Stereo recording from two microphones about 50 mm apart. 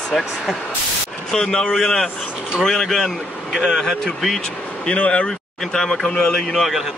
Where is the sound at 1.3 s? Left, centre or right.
Centre.